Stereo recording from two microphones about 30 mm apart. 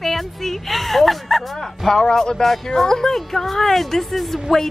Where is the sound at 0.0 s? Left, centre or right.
Centre.